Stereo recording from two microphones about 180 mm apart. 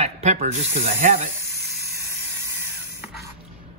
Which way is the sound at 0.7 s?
50° right (ahead or behind).